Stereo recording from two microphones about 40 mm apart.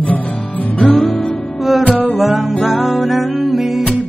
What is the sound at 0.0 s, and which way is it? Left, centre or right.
Music, left.